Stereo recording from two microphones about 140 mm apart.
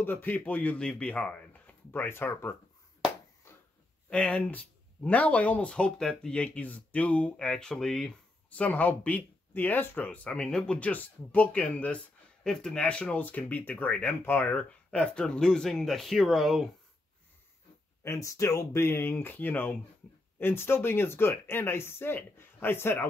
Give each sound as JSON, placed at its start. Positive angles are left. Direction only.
{"t": 0.0, "sound": "speech", "side_deg": 15}
{"t": 4.1, "sound": "speech", "side_deg": 10}
{"t": 18.0, "sound": "speech", "side_deg": 20}